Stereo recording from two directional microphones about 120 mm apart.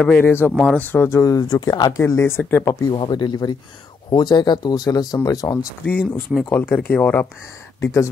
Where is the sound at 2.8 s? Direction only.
40° left (ahead or behind).